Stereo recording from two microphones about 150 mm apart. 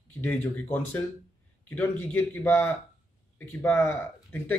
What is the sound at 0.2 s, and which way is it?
A man's voice, 15° left (ahead or behind).